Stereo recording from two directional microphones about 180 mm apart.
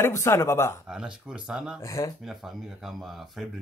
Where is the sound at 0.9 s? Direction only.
5° right (ahead or behind).